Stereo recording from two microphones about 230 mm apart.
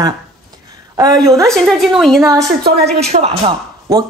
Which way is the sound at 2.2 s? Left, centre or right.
Centre.